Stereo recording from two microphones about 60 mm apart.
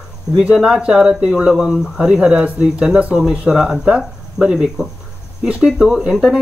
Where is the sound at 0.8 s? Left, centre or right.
Centre.